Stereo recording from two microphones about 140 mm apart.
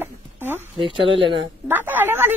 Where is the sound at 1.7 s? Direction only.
15° right (ahead or behind).